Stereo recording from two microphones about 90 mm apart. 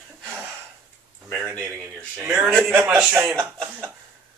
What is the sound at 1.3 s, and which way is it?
Speech, 35° right (ahead or behind).